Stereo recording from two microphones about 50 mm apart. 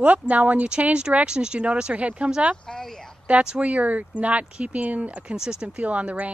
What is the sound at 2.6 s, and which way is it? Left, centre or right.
Speech, centre.